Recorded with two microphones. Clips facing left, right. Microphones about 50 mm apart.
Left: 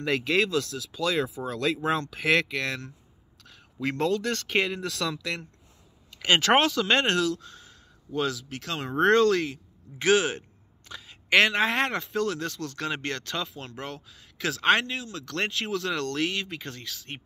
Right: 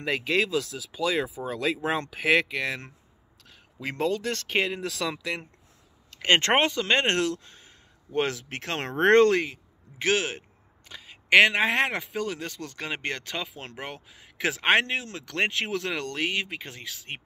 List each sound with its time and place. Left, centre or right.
0.0 s speech: centre
4.0 s speech: centre
6.2 s speech: right
6.5 s speech: right
6.8 s speech: centre
7.2 s speech: right
9.4 s speech: centre